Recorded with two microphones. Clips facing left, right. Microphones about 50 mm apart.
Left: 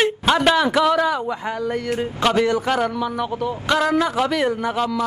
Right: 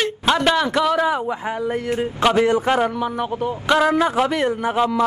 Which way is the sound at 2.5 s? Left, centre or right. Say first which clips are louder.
Right 2 dB; right.